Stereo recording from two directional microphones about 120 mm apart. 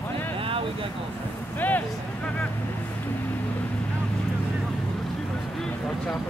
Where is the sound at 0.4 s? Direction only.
50° right (ahead or behind).